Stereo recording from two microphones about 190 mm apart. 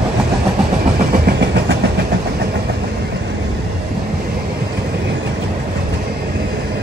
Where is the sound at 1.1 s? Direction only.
55° right (ahead or behind).